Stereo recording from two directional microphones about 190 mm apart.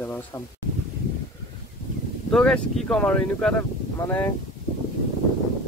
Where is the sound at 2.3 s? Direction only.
5° left (ahead or behind).